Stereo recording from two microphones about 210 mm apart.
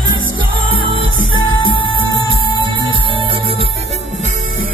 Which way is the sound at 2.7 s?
25° right (ahead or behind).